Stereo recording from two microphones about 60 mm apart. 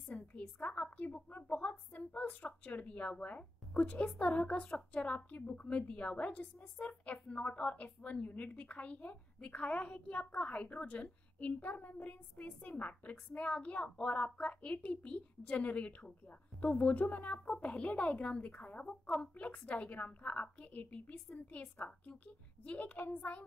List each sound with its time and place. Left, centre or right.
0.3 s a woman's voice: left